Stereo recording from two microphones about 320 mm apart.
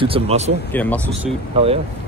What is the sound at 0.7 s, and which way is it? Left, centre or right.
Speech, centre.